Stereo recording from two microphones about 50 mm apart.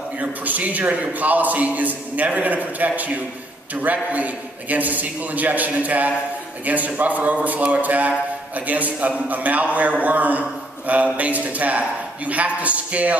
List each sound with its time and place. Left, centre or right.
0.2 s a man's voice: right